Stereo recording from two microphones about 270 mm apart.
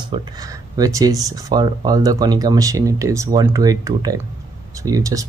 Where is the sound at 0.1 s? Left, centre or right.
Centre.